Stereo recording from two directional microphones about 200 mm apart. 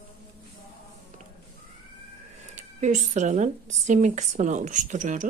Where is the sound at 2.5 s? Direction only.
40° right (ahead or behind).